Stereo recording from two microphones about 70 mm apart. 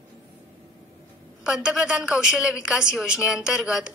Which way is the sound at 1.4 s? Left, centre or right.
Centre.